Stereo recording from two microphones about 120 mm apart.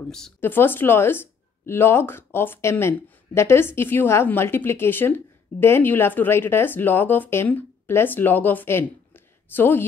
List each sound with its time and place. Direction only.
0.4 s speech: 20° left (ahead or behind)